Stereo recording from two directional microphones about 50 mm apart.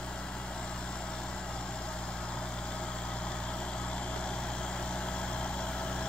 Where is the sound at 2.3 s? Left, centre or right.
Left.